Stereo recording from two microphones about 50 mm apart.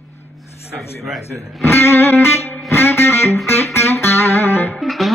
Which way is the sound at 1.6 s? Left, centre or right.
Left.